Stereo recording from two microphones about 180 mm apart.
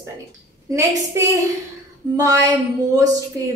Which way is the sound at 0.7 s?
15° right (ahead or behind).